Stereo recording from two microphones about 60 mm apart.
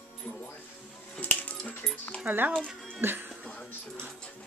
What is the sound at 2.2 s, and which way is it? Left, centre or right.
Speech, right.